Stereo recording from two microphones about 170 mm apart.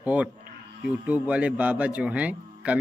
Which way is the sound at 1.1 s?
10° right (ahead or behind).